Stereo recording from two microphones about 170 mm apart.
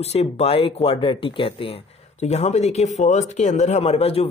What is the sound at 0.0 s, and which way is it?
Speech, 40° left (ahead or behind).